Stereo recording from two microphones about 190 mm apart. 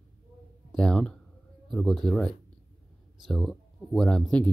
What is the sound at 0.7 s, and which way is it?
Speech, 5° left (ahead or behind).